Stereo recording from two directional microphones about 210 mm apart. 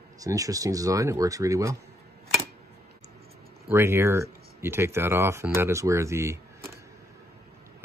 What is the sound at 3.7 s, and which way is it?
Speech, 10° right (ahead or behind).